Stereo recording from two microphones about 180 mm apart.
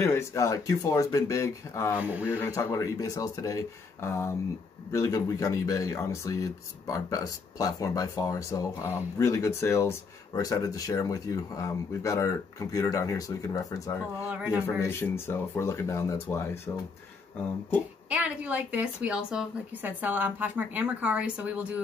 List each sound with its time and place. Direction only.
0.0 s speech: 15° left (ahead or behind)
2.0 s a woman's voice: 10° right (ahead or behind)
2.3 s speech: 15° left (ahead or behind)
14.3 s a woman's voice: 10° right (ahead or behind)
14.8 s speech: 15° left (ahead or behind)
18.1 s a woman's voice: 5° right (ahead or behind)